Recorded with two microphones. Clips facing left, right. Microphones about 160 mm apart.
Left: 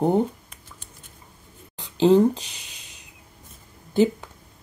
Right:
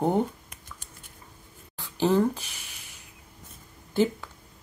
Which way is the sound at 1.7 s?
20° left (ahead or behind).